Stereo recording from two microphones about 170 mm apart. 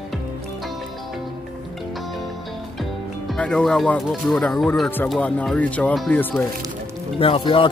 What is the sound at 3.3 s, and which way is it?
Speech, 5° left (ahead or behind).